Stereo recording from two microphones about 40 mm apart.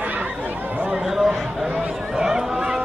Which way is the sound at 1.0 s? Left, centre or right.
Centre.